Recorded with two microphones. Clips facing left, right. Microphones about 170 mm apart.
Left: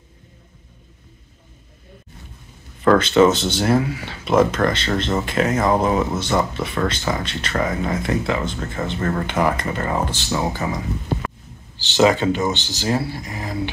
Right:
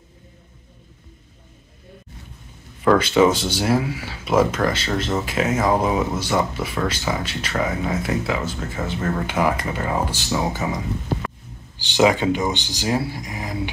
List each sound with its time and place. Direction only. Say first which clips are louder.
2.8 s speech: left 2 dB; 10° right (ahead or behind)
11.7 s speech: left 1 dB; 15° right (ahead or behind)